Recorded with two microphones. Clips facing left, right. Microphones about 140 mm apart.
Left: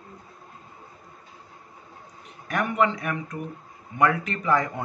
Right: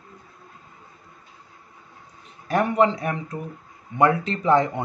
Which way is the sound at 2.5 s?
30° right (ahead or behind).